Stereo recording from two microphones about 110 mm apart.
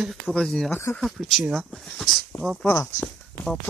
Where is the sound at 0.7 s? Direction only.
20° left (ahead or behind).